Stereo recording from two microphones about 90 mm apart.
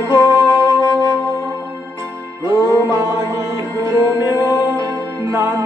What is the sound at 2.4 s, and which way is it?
Music, 30° right (ahead or behind).